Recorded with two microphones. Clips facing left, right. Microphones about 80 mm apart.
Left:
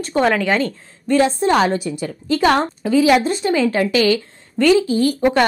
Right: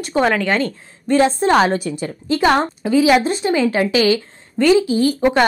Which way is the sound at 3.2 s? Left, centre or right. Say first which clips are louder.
Even; centre.